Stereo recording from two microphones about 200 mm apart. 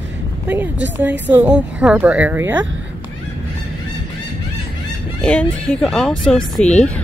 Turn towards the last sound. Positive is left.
turn(degrees=35)  # may be behind; listen again after turning